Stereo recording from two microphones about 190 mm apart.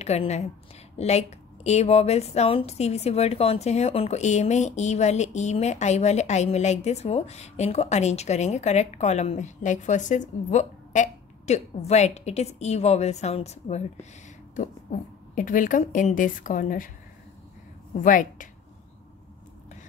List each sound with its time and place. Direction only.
0.0 s a woman's voice: 35° left (ahead or behind)
18.0 s a woman's voice: 45° left (ahead or behind)